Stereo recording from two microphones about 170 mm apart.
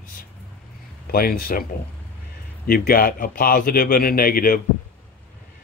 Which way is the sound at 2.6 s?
60° left (ahead or behind).